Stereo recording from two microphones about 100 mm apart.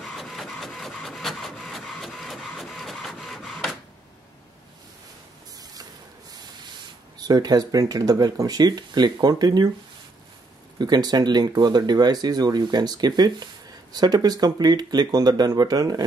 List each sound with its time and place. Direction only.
0.0 s printer: centre (ahead or behind)
7.2 s speech: 40° right (ahead or behind)
10.8 s speech: 45° right (ahead or behind)